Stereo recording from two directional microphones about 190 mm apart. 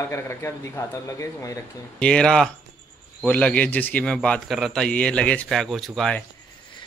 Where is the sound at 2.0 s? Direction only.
5° left (ahead or behind).